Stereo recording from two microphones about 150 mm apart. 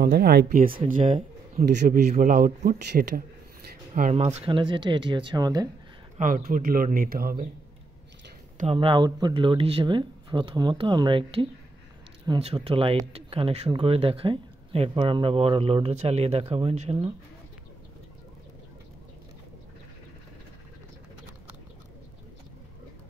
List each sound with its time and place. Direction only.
0.0 s speech: 90° right
1.9 s speech: 65° right (ahead or behind); by 3.3 s 90° right
4.1 s speech: 45° right (ahead or behind)
4.5 s speech: 35° right (ahead or behind)
6.1 s speech: 60° right (ahead or behind); by 7.4 s 80° right
8.7 s speech: 30° right (ahead or behind)